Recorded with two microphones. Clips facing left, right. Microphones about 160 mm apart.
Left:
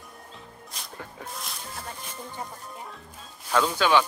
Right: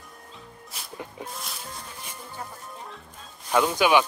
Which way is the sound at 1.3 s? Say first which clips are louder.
Even; centre (ahead or behind).